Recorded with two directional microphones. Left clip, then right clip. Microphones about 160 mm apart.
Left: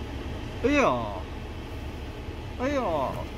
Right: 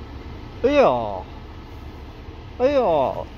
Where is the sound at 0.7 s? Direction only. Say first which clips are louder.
Right 7 dB; 35° right (ahead or behind).